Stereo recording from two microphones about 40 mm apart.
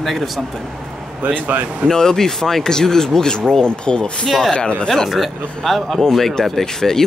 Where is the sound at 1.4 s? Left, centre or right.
Right.